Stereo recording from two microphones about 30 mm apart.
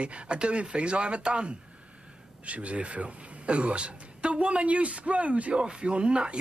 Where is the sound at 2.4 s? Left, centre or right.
Right.